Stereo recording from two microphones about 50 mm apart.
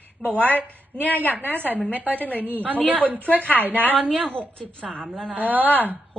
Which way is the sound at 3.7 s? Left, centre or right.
Left.